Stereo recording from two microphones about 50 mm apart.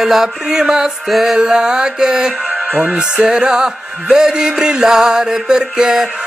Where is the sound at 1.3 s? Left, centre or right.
Centre.